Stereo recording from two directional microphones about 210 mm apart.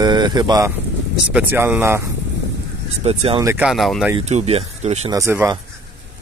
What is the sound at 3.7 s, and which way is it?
Speech, centre (ahead or behind).